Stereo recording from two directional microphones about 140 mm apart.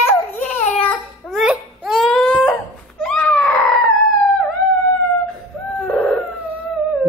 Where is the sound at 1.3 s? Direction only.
5° right (ahead or behind).